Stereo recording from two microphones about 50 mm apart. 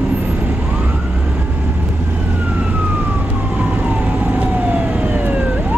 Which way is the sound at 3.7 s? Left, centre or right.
Right.